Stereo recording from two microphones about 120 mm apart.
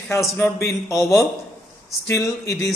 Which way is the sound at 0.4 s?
20° left (ahead or behind).